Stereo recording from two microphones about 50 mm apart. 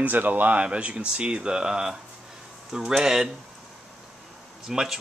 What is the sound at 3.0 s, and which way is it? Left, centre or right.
Speech, centre.